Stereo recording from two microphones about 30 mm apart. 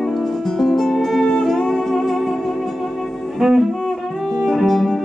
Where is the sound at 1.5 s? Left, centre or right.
Centre.